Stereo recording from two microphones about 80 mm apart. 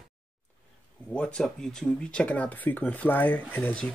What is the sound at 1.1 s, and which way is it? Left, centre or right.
Speech, centre.